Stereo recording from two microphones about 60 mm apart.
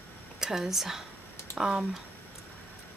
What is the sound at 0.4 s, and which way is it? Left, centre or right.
Speech, centre.